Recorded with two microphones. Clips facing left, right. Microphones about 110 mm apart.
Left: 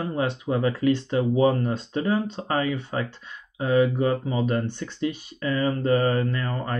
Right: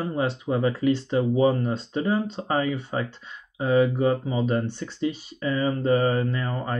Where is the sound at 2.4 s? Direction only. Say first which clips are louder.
Even; 15° right (ahead or behind).